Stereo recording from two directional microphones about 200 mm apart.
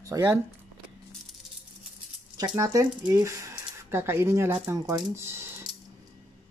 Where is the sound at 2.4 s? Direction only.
15° right (ahead or behind).